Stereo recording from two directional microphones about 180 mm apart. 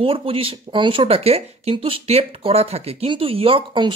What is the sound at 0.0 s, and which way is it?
Speech, 30° right (ahead or behind).